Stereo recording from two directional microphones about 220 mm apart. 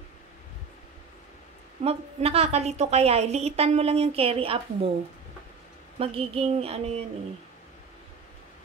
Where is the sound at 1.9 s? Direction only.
30° right (ahead or behind).